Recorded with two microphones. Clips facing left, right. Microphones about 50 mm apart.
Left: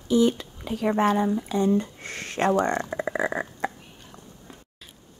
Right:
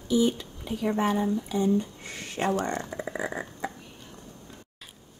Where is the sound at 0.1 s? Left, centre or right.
Left.